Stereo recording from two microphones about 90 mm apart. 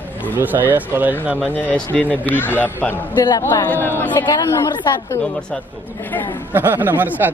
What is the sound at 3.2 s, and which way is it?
Speech, 50° left (ahead or behind).